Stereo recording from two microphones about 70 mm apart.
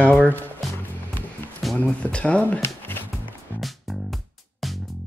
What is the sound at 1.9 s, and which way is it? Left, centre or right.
Speech, centre.